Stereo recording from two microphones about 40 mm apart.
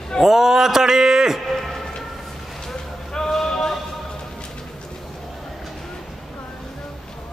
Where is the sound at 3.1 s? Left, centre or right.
Centre.